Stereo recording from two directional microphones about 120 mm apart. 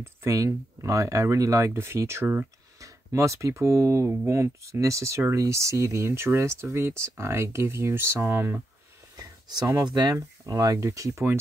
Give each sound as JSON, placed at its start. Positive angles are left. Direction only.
{"t": 0.0, "sound": "speech", "side_deg": -25}
{"t": 9.1, "sound": "a sound", "side_deg": -35}
{"t": 9.8, "sound": "speech", "side_deg": -35}